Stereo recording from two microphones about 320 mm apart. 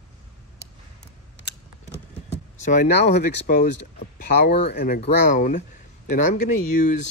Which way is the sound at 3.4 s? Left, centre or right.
Left.